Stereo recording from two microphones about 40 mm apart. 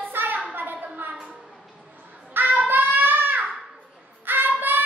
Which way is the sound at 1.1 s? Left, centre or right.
Right.